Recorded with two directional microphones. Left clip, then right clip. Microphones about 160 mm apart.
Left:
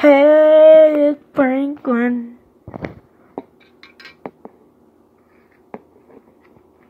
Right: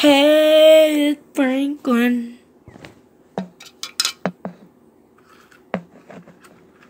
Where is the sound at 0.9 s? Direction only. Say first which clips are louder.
Left 5 dB; 5° left (ahead or behind).